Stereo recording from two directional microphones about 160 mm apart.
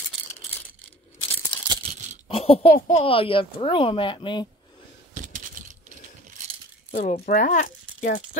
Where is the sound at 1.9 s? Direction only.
50° right (ahead or behind).